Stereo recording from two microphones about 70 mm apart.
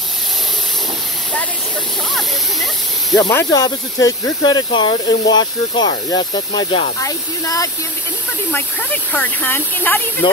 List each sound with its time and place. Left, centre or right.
2.1 s speech: centre
3.4 s speech: left
9.1 s speech: left